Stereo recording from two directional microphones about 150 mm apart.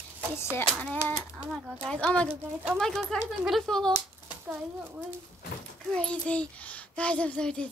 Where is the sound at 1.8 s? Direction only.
5° left (ahead or behind).